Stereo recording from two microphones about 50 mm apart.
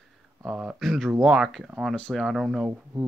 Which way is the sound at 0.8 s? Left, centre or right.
Centre.